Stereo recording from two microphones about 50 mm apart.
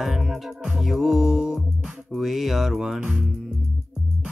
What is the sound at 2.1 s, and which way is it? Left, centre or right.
Speech, centre.